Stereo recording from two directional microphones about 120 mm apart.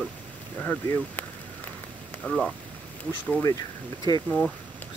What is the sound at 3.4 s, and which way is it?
Speech, 30° left (ahead or behind).